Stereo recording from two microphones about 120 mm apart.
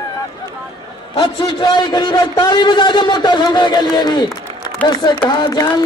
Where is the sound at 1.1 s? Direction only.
45° left (ahead or behind).